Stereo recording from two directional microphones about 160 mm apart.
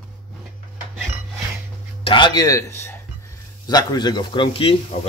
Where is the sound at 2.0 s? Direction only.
30° left (ahead or behind).